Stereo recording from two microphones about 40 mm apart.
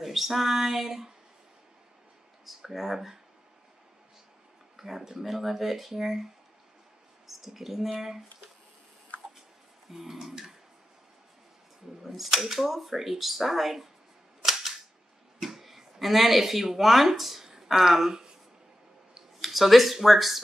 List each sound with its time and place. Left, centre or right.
0.0 s speech: centre
2.4 s speech: centre
4.7 s speech: centre
7.2 s speech: centre
9.8 s speech: centre
12.0 s speech: centre
15.3 s speech: centre
17.5 s a sound: centre
19.4 s speech: centre